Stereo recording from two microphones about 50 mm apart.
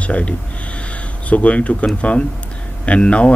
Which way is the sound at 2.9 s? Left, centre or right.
Left.